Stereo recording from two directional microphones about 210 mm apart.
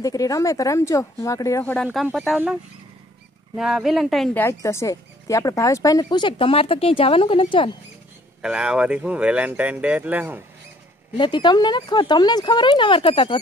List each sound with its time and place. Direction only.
0.0 s speech: 15° left (ahead or behind)
1.9 s speech: 5° right (ahead or behind); by 7.7 s 25° left (ahead or behind)
8.4 s speech: 5° right (ahead or behind)
11.1 s speech: 20° left (ahead or behind)